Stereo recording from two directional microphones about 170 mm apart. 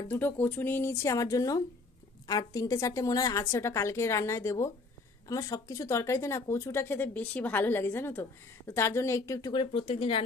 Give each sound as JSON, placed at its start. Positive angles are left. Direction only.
{"t": 0.1, "sound": "speech", "side_deg": 10}